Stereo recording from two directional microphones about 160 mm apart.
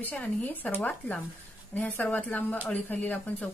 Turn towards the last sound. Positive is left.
turn(degrees=10)  # may be behind; listen again after turning